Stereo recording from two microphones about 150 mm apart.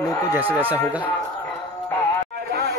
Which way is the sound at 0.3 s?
10° right (ahead or behind).